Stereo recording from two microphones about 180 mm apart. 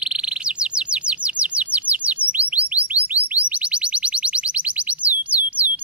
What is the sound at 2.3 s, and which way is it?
Bird, 10° right (ahead or behind).